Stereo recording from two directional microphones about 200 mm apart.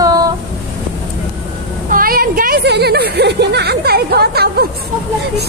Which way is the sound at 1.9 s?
45° right (ahead or behind).